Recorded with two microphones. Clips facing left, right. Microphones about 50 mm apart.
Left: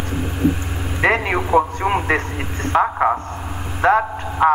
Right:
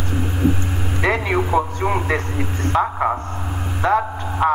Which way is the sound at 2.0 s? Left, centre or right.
Left.